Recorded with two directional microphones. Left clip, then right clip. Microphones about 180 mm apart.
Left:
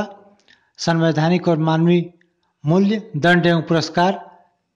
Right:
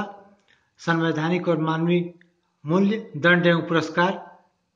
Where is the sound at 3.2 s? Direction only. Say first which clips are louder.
Left 3 dB; 55° left (ahead or behind).